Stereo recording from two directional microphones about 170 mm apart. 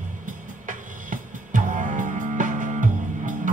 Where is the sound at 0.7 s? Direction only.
50° right (ahead or behind).